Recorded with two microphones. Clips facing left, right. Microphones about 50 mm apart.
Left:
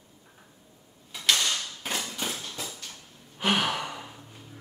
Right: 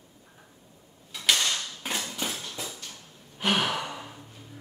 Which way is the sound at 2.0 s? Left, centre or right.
Centre.